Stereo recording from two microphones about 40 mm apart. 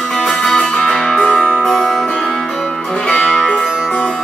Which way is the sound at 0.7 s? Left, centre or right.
Left.